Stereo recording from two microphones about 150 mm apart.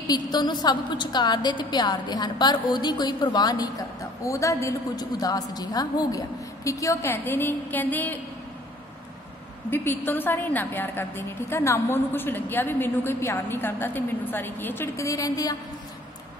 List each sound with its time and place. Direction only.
0.0 s a woman's voice: 25° left (ahead or behind); by 8.2 s 10° left (ahead or behind)
9.7 s a woman's voice: 15° left (ahead or behind)